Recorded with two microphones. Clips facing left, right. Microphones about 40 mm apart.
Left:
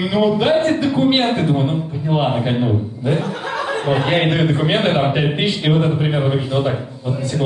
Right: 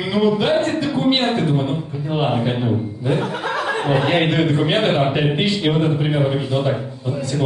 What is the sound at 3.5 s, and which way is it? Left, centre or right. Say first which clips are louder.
Chuckle: even; centre.